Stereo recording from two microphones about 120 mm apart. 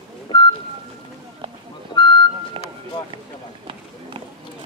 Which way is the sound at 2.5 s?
50° right (ahead or behind).